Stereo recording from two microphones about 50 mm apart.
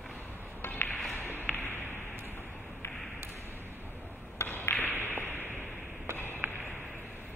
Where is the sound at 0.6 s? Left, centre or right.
Left.